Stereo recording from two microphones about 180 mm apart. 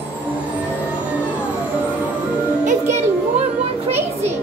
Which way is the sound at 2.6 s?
40° right (ahead or behind).